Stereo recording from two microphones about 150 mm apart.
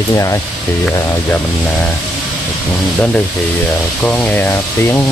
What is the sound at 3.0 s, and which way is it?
Speech, 10° left (ahead or behind).